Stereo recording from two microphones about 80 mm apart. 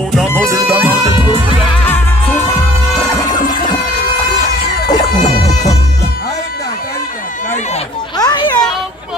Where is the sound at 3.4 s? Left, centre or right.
Left.